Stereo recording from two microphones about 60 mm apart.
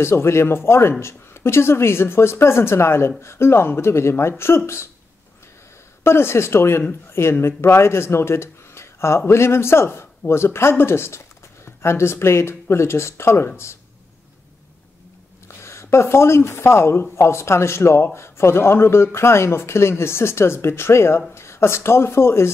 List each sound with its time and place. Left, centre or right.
0.0 s speech: left
6.0 s speech: left
15.4 s speech: left